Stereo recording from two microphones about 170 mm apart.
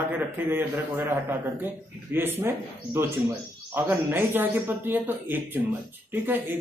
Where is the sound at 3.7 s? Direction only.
10° right (ahead or behind).